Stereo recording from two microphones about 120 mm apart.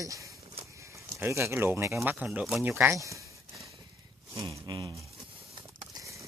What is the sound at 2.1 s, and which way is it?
Speech, 10° right (ahead or behind).